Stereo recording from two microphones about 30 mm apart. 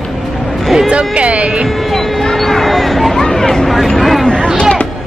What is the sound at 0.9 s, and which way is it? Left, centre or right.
Speech, right.